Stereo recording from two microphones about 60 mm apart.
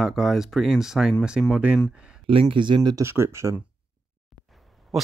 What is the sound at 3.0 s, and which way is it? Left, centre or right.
Speech, right.